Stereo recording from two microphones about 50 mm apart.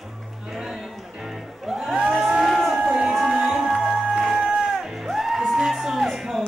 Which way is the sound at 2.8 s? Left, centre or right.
Centre.